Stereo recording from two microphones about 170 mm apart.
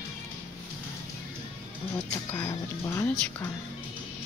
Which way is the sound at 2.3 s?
20° left (ahead or behind).